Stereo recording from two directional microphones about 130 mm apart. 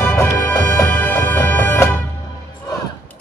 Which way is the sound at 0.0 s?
20° left (ahead or behind).